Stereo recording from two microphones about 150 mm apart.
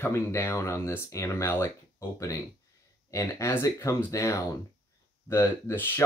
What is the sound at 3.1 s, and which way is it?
Speech, 20° left (ahead or behind).